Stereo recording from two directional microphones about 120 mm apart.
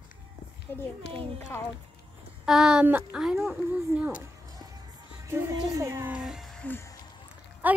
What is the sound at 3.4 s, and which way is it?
Music, 20° right (ahead or behind).